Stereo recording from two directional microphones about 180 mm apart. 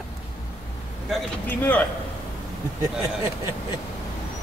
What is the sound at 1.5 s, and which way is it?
Speech, 10° left (ahead or behind).